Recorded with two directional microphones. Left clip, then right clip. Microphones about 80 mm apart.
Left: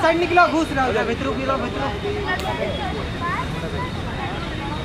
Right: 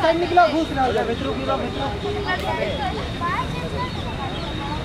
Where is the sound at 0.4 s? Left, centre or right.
Left.